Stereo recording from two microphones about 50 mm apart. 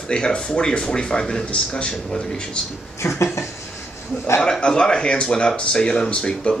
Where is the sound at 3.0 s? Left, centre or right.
Left.